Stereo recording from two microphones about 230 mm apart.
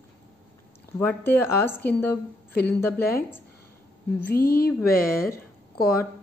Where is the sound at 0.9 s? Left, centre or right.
Centre.